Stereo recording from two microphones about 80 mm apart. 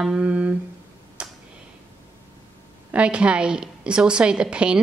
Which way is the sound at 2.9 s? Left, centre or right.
Centre.